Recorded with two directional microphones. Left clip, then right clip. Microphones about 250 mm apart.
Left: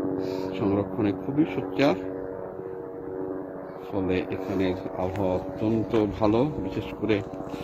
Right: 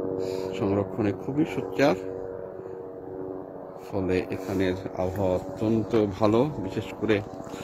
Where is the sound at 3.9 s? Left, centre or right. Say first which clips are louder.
Even; right.